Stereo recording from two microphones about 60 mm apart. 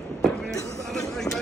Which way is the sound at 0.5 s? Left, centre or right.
Left.